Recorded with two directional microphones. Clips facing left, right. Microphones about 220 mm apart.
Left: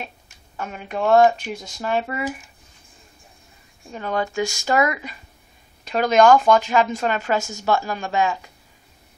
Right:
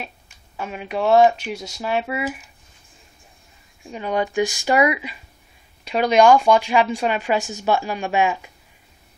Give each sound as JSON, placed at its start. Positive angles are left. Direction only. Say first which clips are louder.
{"t": 0.6, "sound": "speech", "louder": "right 1 dB", "side_deg": -10}
{"t": 3.9, "sound": "speech", "louder": "right 2 dB", "side_deg": -15}